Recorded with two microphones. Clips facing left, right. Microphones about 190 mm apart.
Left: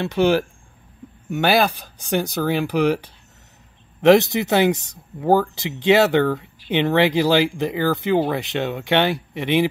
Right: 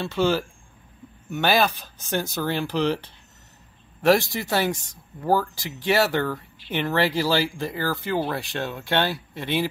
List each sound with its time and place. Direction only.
0.0 s speech: 15° left (ahead or behind)